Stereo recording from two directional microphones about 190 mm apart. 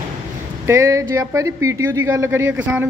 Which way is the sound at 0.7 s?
15° right (ahead or behind).